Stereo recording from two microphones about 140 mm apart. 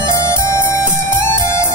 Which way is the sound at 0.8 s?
20° left (ahead or behind).